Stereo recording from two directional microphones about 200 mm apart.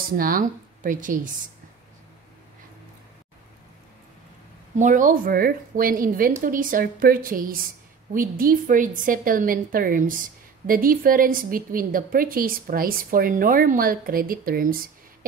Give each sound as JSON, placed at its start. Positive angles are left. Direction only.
{"t": 0.2, "sound": "speech", "side_deg": -45}
{"t": 4.7, "sound": "a woman's voice", "side_deg": -40}